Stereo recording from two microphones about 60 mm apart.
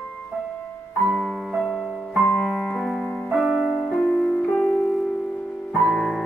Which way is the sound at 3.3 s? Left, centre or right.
Centre.